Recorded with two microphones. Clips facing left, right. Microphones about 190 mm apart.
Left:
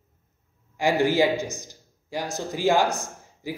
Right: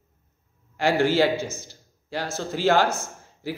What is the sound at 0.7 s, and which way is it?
A man's voice, 15° left (ahead or behind).